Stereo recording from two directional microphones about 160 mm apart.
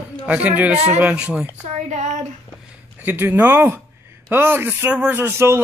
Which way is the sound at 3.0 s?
10° right (ahead or behind).